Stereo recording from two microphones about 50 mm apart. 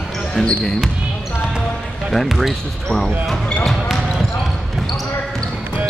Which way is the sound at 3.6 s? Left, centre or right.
Centre.